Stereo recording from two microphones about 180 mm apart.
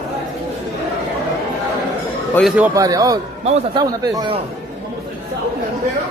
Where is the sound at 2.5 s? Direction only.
15° right (ahead or behind).